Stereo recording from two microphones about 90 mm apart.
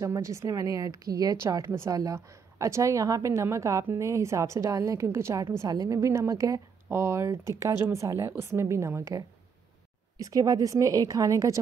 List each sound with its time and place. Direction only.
0.0 s a woman's voice: 35° right (ahead or behind)